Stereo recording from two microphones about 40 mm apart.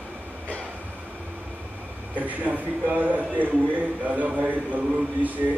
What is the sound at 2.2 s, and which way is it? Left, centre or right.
Speech, right.